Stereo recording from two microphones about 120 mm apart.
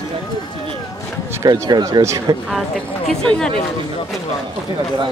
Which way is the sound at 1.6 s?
35° right (ahead or behind).